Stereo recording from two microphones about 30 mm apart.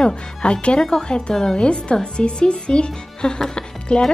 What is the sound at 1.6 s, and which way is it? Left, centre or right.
Speech, left.